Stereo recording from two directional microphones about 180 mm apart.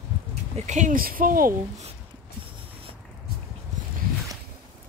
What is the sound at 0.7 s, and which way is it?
Speech, 45° right (ahead or behind).